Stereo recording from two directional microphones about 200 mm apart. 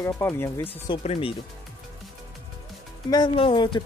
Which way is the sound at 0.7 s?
25° left (ahead or behind).